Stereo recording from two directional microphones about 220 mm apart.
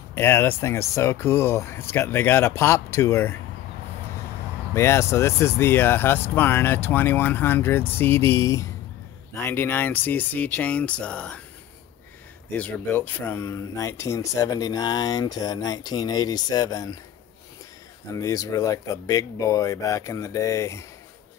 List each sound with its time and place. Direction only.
0.1 s speech: 10° left (ahead or behind)
4.7 s speech: 10° left (ahead or behind)
12.5 s speech: 10° left (ahead or behind)
18.1 s speech: 15° left (ahead or behind)